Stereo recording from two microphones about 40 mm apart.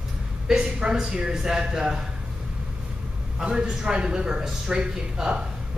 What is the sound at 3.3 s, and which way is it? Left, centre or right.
A man's voice, centre.